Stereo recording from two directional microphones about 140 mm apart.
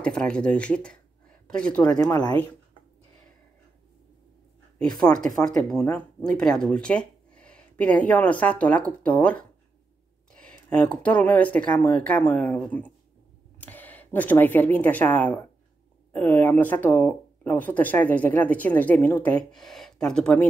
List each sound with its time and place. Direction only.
0.0 s speech: 5° left (ahead or behind)
2.0 s speech: 30° left (ahead or behind)
4.7 s speech: 5° left (ahead or behind)
10.7 s speech: 10° left (ahead or behind)